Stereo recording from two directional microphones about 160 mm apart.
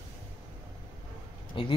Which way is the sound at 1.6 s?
30° left (ahead or behind).